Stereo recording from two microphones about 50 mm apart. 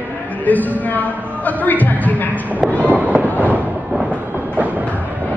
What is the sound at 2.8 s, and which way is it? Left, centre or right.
Fireworks, right.